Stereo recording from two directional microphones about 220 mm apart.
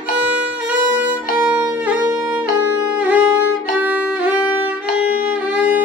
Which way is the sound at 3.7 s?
5° right (ahead or behind).